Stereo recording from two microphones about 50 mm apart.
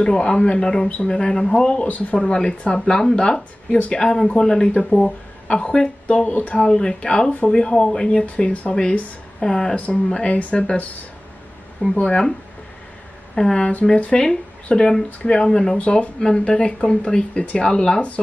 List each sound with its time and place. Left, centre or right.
0.0 s speech: centre
2.1 s speech: centre
3.7 s speech: left
6.6 s speech: centre
12.0 s speech: left
13.3 s speech: centre
15.8 s speech: left